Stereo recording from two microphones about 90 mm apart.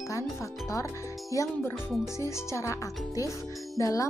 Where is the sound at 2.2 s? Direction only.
30° left (ahead or behind).